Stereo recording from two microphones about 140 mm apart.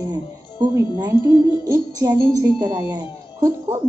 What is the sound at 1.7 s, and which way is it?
A woman's voice, 25° right (ahead or behind).